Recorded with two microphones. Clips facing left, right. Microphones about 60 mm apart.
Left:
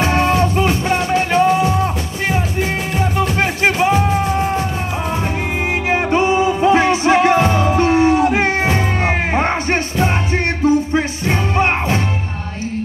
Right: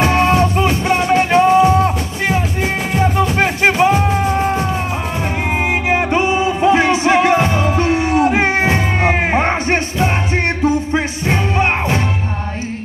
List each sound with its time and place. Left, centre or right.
0.0 s music: right
5.9 s music: right